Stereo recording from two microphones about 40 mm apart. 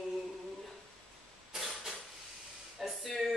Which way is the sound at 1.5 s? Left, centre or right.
Centre.